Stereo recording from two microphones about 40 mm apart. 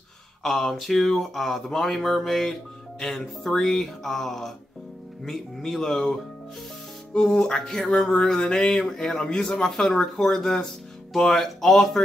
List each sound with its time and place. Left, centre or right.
0.4 s speech: centre
7.2 s speech: centre